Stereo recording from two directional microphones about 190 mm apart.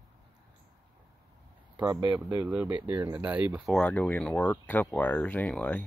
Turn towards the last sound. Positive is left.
turn(degrees=5)  # may be behind; listen again after turning